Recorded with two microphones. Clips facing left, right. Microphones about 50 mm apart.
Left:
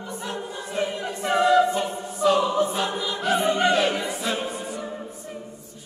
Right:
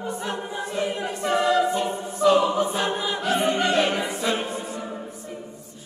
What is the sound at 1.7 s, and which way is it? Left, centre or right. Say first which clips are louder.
Music: right 1 dB; centre.